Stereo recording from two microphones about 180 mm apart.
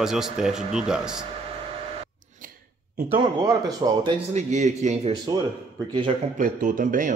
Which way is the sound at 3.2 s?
20° right (ahead or behind).